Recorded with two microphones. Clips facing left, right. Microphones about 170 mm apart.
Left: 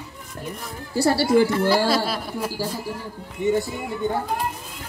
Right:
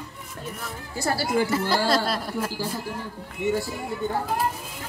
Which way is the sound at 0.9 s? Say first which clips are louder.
Left 7 dB; 30° left (ahead or behind).